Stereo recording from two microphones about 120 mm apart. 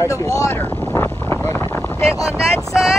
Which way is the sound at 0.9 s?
20° left (ahead or behind).